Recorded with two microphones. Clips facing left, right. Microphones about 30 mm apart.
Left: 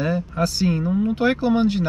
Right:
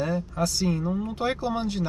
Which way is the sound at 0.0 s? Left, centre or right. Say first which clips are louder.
Left 4 dB; left.